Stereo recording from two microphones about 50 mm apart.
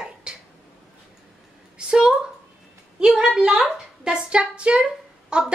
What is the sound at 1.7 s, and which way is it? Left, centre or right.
A woman's voice, centre.